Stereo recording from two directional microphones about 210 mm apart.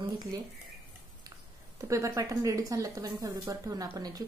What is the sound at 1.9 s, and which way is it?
Speech, 15° right (ahead or behind).